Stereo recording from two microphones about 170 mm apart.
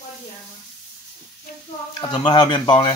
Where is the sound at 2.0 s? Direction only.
30° left (ahead or behind).